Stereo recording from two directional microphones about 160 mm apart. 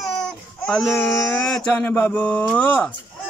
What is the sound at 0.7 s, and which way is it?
Speech, 5° left (ahead or behind).